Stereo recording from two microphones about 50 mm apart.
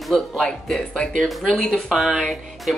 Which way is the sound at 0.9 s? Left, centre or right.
Centre.